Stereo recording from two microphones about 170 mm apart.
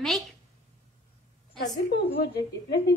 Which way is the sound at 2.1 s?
70° left (ahead or behind).